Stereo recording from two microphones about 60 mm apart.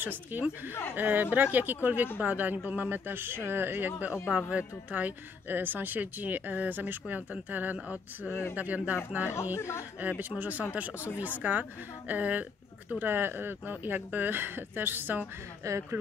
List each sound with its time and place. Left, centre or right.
0.0 s speech: right
4.4 s speech: centre
9.6 s speech: left
9.9 s speech: right
11.0 s speech: left
11.2 s speech: right
15.6 s speech: right